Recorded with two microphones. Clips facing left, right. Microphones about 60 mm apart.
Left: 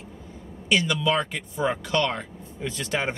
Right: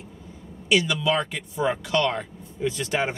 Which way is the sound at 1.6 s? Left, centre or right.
Left.